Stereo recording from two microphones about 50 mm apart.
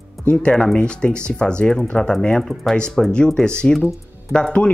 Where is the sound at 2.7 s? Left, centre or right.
Centre.